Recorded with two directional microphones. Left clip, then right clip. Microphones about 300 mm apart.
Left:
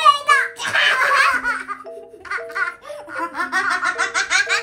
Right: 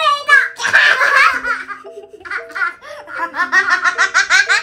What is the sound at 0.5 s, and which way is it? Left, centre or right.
Belly laugh, centre.